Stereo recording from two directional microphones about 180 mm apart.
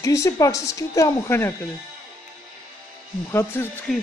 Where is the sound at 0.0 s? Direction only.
20° left (ahead or behind).